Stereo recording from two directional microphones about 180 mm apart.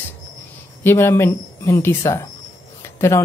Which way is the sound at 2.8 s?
15° left (ahead or behind).